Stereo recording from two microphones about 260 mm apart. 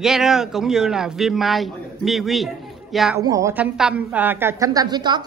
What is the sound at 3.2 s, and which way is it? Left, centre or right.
A woman's voice, centre.